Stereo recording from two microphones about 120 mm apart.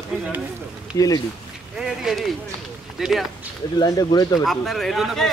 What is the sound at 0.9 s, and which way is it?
Speech, 30° left (ahead or behind).